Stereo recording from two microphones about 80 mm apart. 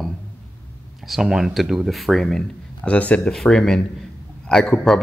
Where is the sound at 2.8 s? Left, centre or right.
Centre.